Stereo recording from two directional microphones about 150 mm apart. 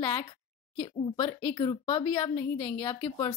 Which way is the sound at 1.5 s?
35° left (ahead or behind).